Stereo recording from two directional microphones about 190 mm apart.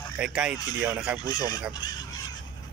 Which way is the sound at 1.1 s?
20° left (ahead or behind).